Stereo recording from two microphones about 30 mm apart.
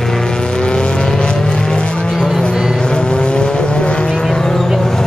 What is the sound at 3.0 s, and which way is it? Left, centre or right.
Vehicle, left.